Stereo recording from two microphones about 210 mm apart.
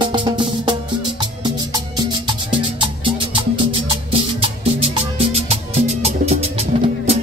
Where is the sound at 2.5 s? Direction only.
25° right (ahead or behind).